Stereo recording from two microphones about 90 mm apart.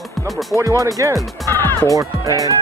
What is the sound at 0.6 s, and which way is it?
Speech, 35° right (ahead or behind).